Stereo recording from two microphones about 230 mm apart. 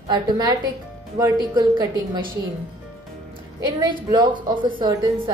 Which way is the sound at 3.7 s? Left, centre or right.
Centre.